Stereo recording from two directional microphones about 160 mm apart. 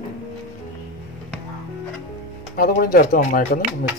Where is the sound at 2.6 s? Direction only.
65° left (ahead or behind).